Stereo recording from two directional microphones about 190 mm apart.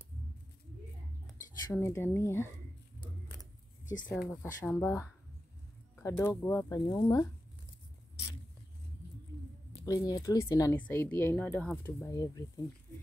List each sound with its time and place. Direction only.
1.7 s speech: 15° left (ahead or behind)
4.3 s speech: 10° left (ahead or behind)
9.8 s speech: 20° left (ahead or behind)